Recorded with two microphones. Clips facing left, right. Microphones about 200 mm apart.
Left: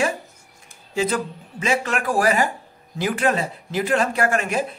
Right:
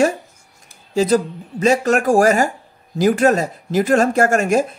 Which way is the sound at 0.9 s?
40° right (ahead or behind).